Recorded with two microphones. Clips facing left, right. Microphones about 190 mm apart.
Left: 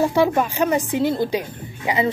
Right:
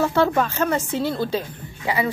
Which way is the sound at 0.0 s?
15° left (ahead or behind).